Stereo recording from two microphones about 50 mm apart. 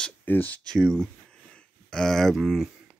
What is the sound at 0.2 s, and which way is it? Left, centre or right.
Speech, left.